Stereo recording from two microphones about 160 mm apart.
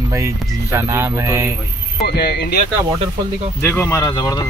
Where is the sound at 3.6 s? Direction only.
15° left (ahead or behind).